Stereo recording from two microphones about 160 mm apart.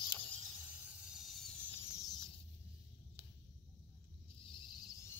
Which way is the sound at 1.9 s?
25° left (ahead or behind).